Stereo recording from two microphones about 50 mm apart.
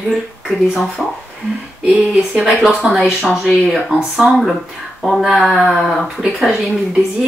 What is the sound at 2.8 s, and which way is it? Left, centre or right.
Speech, centre.